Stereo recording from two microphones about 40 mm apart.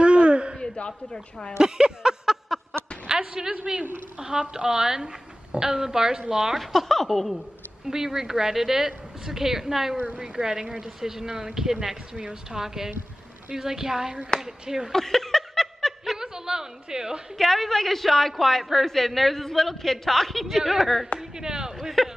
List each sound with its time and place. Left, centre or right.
0.0 s a sound: right
1.6 s a woman's voice: centre
6.6 s a woman's voice: centre
7.8 s a woman's voice: centre
14.9 s laughter: centre
16.2 s a sound: centre
17.4 s a woman's voice: centre
21.2 s speech: centre
21.7 s a woman's voice: centre